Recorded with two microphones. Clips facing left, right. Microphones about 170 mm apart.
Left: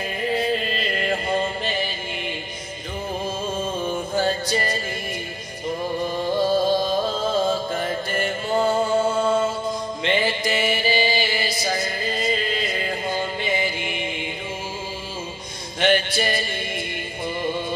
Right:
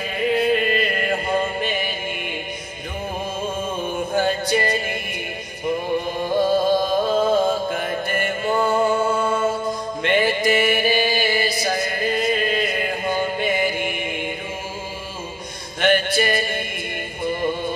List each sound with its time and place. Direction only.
0.2 s chant: 65° right (ahead or behind)
4.1 s music: 60° right (ahead or behind)
6.1 s music: 50° right (ahead or behind)
10.0 s mantra: 50° right (ahead or behind)
15.8 s music: 50° right (ahead or behind)